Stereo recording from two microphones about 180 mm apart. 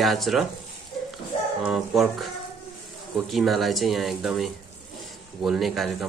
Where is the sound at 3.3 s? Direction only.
Centre (ahead or behind).